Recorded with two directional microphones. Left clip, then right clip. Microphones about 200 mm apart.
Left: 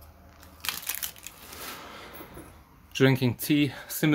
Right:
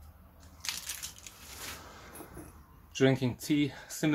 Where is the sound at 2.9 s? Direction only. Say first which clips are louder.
Left 4 dB; 40° left (ahead or behind).